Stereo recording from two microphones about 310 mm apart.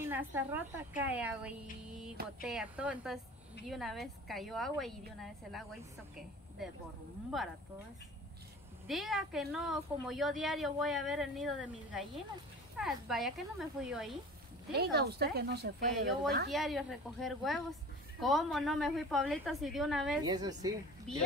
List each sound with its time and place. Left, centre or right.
0.0 s speech: centre
1.9 s a sound: centre
2.4 s speech: centre
8.8 s speech: centre
14.7 s speech: right
16.4 s speech: centre
20.2 s a woman's voice: centre